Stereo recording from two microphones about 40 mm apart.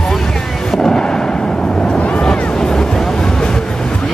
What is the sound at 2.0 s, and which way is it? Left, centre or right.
Vehicle, left.